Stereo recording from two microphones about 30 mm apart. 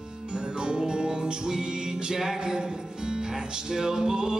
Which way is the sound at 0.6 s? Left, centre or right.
Right.